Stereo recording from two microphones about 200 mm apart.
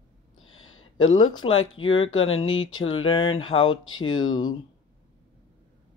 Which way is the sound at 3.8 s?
90° left.